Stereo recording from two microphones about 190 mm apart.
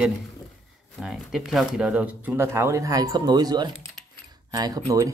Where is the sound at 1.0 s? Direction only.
Centre (ahead or behind); by 4.8 s 20° right (ahead or behind).